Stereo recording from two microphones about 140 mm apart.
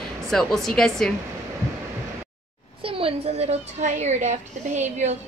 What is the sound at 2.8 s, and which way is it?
A woman's voice, 40° right (ahead or behind).